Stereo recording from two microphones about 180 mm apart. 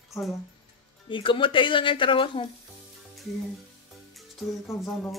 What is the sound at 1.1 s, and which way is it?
Speech, 30° left (ahead or behind).